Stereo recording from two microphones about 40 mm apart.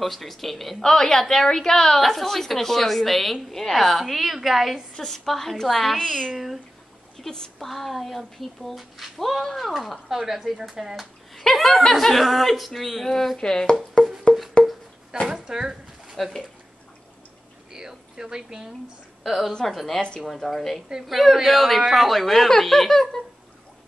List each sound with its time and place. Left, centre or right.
0.0 s a woman's voice: centre
4.0 s speech: centre
4.9 s a woman's voice: centre
5.9 s a woman's voice: centre
6.3 s speech: centre
7.2 s speech: centre
10.1 s speech: centre
11.3 s a woman's voice: centre
14.0 s music: centre
15.2 s speech: centre
17.7 s speech: centre
19.2 s a woman's voice: centre